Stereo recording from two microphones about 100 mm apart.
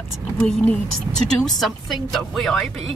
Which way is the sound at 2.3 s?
5° left (ahead or behind).